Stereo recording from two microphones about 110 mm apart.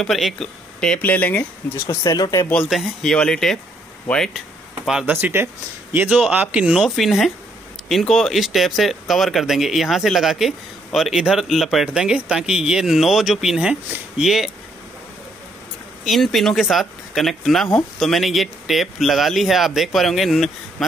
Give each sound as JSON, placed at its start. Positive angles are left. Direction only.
{"t": 0.0, "sound": "speech", "side_deg": 5}
{"t": 1.9, "sound": "speech", "side_deg": 35}
{"t": 2.7, "sound": "speech", "side_deg": 0}
{"t": 5.0, "sound": "speech", "side_deg": -20}
{"t": 5.9, "sound": "a man's voice", "side_deg": -10}
{"t": 16.0, "sound": "speech", "side_deg": 0}